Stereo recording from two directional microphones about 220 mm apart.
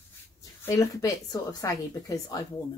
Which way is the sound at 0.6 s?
15° left (ahead or behind).